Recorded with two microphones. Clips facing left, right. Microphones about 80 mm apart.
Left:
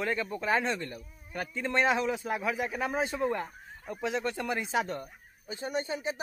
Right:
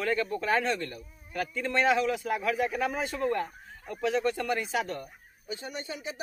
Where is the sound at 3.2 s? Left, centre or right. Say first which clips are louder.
Right 2 dB; centre.